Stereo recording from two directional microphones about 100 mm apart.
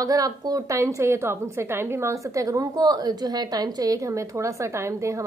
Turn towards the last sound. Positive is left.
turn(degrees=-30)  # may be behind; listen again after turning